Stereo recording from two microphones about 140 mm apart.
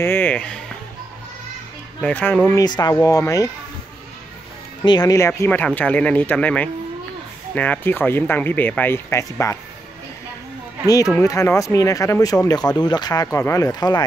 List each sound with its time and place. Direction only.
0.0 s speech: 15° left (ahead or behind)
2.0 s speech: 10° left (ahead or behind)
2.5 s speech: 30° left (ahead or behind)
4.8 s speech: 30° left (ahead or behind)
5.5 s speech: 10° left (ahead or behind)
11.1 s speech: 20° left (ahead or behind)